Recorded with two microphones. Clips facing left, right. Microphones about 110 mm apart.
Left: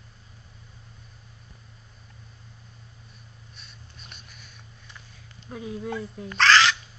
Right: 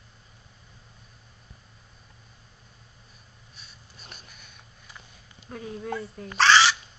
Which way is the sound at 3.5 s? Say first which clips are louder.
Even; centre (ahead or behind).